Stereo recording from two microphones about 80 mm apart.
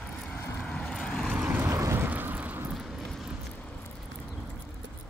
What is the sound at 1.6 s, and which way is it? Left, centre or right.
Vehicle, right.